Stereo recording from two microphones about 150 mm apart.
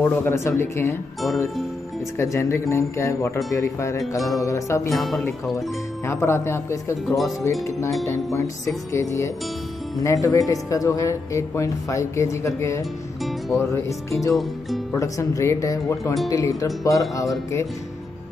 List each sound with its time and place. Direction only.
0.0 s speech: 15° left (ahead or behind)
2.1 s speech: 20° left (ahead or behind)
4.9 s speech: centre (ahead or behind)
6.0 s speech: 15° left (ahead or behind)
14.3 s speech: centre (ahead or behind)
15.0 s speech: 20° left (ahead or behind)